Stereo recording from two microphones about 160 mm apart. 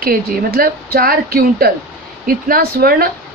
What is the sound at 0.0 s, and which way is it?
Speech, 65° right (ahead or behind).